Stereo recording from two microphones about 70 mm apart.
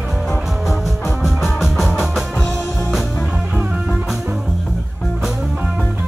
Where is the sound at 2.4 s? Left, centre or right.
Centre.